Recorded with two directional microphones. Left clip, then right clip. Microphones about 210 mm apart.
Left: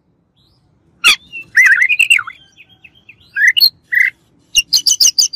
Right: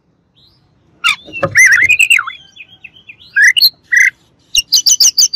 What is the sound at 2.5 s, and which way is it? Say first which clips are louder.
Bird vocalization: right 8 dB; 20° right (ahead or behind).